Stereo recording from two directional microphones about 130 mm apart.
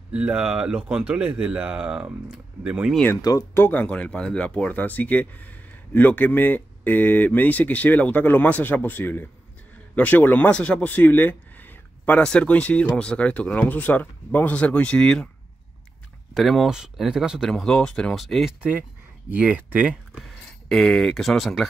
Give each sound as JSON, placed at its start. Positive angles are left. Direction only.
{"t": 0.1, "sound": "speech", "side_deg": -10}
{"t": 3.2, "sound": "speech", "side_deg": 30}
{"t": 3.5, "sound": "speech", "side_deg": 15}
{"t": 16.3, "sound": "speech", "side_deg": 0}